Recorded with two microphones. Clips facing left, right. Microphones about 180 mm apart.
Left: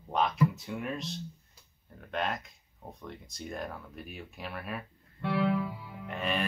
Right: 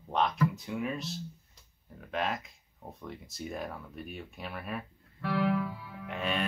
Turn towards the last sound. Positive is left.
turn(degrees=0)  # may be behind; listen again after turning